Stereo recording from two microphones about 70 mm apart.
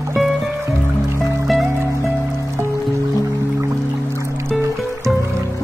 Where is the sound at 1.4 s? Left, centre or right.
Centre.